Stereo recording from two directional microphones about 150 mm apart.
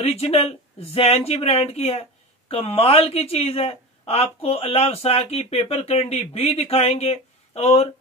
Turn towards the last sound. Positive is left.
turn(degrees=45)  # may be behind; listen again after turning